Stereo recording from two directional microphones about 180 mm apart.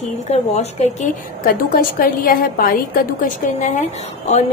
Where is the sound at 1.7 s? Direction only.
55° left (ahead or behind).